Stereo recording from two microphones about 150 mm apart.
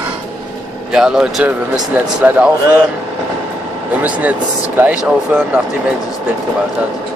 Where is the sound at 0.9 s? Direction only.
5° right (ahead or behind).